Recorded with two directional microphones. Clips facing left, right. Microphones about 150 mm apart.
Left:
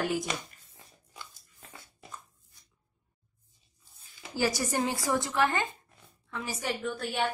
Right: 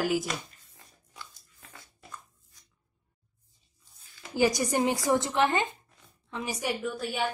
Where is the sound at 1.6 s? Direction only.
15° left (ahead or behind).